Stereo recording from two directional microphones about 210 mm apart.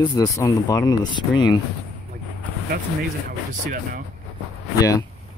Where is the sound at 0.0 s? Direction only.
20° left (ahead or behind).